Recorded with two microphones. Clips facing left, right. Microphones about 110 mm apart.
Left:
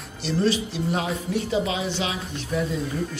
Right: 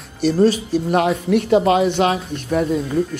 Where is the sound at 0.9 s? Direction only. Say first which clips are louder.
Right 10 dB; 65° right (ahead or behind).